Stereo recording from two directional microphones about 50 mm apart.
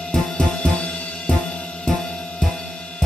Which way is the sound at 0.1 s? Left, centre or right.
Centre.